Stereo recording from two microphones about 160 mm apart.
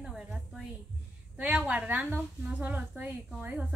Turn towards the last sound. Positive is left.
turn(degrees=-10)  # may be behind; listen again after turning